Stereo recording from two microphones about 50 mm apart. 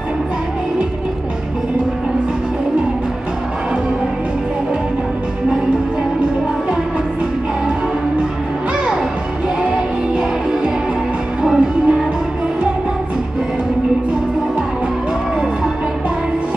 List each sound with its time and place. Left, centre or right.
9.6 s music: right
11.4 s music: centre